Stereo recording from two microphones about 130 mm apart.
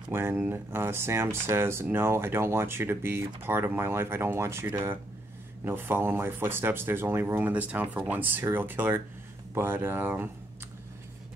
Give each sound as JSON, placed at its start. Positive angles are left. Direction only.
{"t": 0.1, "sound": "speech", "side_deg": -15}